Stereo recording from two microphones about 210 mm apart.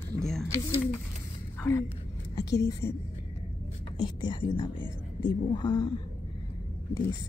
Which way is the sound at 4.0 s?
20° left (ahead or behind).